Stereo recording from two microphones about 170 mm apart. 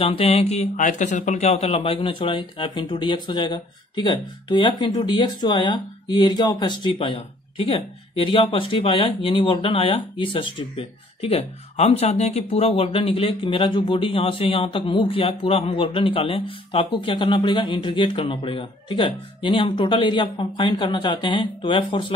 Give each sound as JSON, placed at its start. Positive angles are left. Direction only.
{"t": 0.0, "sound": "a man's voice", "side_deg": 35}